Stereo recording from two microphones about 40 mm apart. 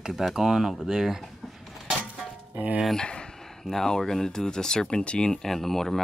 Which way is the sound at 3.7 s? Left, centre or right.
Centre.